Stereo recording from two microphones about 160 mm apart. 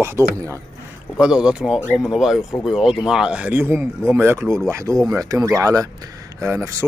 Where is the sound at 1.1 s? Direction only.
5° right (ahead or behind).